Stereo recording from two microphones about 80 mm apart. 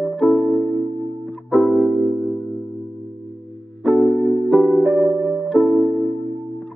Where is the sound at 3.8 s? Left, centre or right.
Centre.